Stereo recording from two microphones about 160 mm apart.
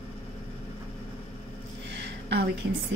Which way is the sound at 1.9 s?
90° right.